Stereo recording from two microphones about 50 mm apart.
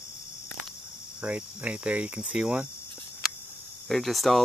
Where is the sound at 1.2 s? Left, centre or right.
Right.